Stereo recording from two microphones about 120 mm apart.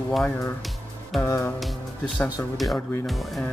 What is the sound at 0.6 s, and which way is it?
Music, centre (ahead or behind).